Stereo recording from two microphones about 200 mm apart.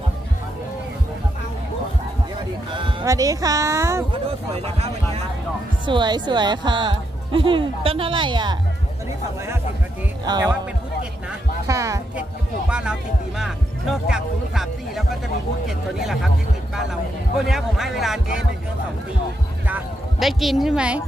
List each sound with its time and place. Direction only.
2.7 s speech: 20° right (ahead or behind)
4.6 s a woman's voice: 30° right (ahead or behind)
10.2 s speech: 20° right (ahead or behind)
11.6 s a sound: 15° right (ahead or behind)
13.4 s speech: centre (ahead or behind)
17.5 s speech: centre (ahead or behind)
19.7 s speech: centre (ahead or behind)